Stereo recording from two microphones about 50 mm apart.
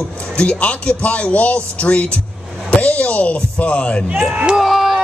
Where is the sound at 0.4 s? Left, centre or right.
Left.